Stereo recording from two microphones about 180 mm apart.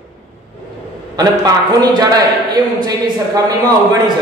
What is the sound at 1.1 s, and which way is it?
A man's voice, 20° right (ahead or behind).